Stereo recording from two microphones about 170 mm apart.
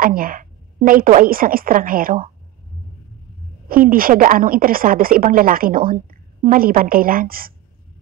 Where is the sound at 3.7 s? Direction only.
55° right (ahead or behind).